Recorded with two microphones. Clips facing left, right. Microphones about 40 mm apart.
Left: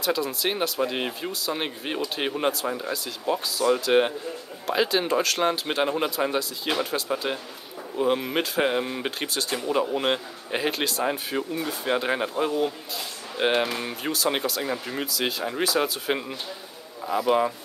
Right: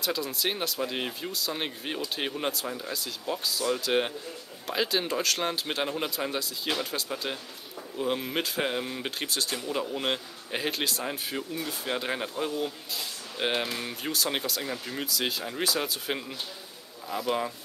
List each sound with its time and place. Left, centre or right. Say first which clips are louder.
0.0 s speech: left 4 dB; centre
2.9 s speech: left 6 dB; centre
15.0 s speech: left 3 dB; centre
16.1 s speech: left 5 dB; centre